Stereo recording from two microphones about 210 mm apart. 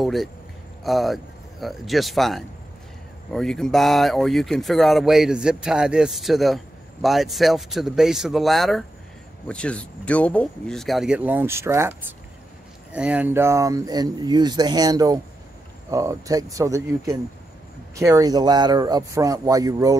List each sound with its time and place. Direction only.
0.0 s speech: centre (ahead or behind)
12.9 s speech: 5° right (ahead or behind)